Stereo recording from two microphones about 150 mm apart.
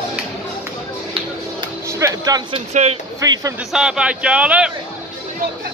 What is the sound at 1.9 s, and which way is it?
Speech, 20° right (ahead or behind).